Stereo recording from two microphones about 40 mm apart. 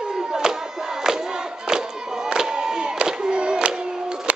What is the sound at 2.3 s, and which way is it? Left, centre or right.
Crowd, centre.